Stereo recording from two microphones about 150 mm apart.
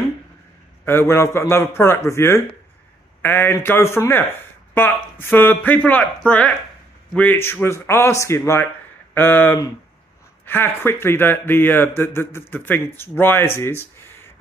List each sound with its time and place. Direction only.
0.8 s a man's voice: 15° left (ahead or behind)